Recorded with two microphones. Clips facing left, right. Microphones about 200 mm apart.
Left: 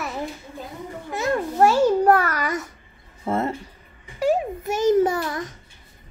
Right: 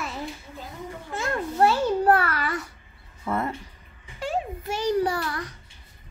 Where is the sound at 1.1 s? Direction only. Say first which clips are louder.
Left 5 dB; 15° left (ahead or behind).